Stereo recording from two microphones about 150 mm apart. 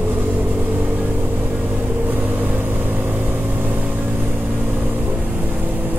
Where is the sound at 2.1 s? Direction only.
10° right (ahead or behind).